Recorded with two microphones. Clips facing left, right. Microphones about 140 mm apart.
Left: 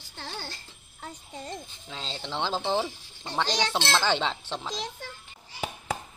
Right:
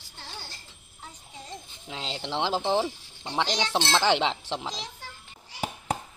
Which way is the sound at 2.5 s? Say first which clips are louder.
Right 2 dB; 5° right (ahead or behind).